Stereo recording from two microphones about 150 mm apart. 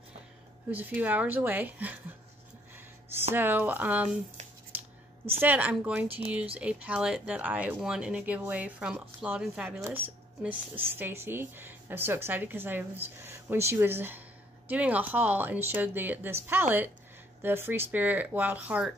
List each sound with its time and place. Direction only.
0.7 s speech: 10° right (ahead or behind)
3.3 s speech: 10° right (ahead or behind)
5.4 s speech: 10° right (ahead or behind)